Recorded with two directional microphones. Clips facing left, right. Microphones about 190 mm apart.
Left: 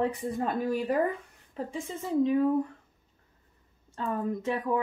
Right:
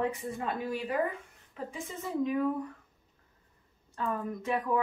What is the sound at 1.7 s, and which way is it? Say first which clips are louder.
Speech: left 6 dB; 30° left (ahead or behind).